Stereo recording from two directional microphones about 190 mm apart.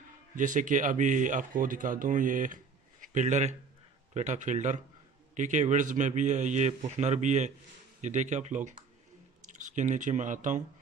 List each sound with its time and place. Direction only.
0.4 s a man's voice: 45° right (ahead or behind)